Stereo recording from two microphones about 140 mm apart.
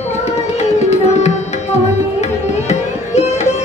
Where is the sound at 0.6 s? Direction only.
50° left (ahead or behind).